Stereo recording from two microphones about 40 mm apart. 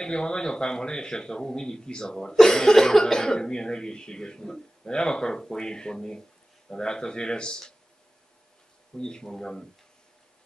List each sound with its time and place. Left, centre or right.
0.0 s speech: centre
8.9 s speech: centre